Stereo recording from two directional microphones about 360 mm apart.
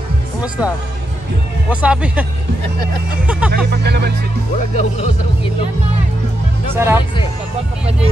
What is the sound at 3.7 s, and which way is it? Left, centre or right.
Speech, right.